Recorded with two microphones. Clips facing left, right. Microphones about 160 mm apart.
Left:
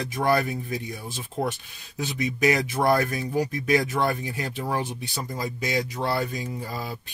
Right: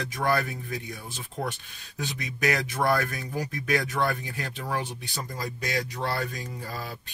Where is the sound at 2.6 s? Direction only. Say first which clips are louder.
Left 3 dB; 20° left (ahead or behind).